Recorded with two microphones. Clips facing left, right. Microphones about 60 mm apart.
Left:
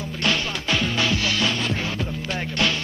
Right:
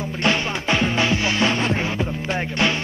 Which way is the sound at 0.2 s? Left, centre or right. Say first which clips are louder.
Right 3 dB; right.